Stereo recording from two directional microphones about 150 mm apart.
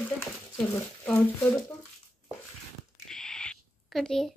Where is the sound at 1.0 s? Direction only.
10° left (ahead or behind).